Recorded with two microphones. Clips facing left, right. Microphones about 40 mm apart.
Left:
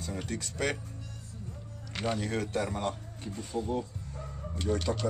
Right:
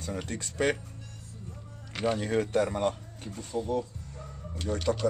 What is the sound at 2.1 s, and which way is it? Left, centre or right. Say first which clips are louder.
Speech: right 7 dB; right.